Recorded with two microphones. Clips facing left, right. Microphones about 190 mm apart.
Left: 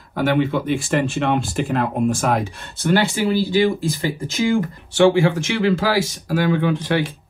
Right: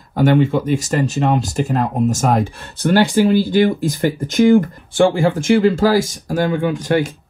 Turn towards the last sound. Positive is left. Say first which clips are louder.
# right 3 dB
turn(degrees=-45)  # may be behind; listen again after turning